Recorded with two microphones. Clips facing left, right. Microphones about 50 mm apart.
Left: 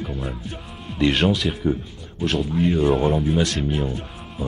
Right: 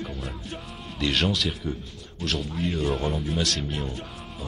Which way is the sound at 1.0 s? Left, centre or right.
Centre.